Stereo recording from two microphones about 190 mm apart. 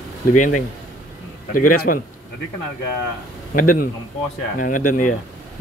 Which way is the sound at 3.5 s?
45° left (ahead or behind).